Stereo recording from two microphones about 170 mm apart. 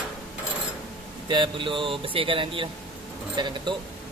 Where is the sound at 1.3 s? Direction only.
30° right (ahead or behind).